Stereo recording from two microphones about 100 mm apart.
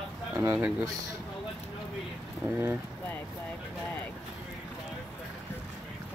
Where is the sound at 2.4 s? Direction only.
30° right (ahead or behind).